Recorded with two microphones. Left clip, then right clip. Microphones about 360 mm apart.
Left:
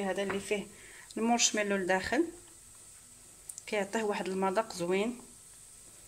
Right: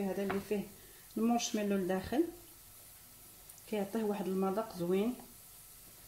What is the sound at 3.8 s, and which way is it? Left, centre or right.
Speech, left.